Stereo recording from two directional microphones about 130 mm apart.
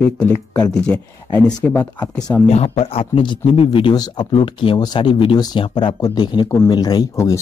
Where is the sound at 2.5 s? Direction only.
50° left (ahead or behind); by 7.4 s 25° left (ahead or behind).